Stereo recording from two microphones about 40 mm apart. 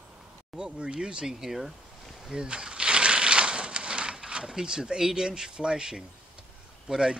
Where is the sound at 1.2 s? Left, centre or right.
Centre.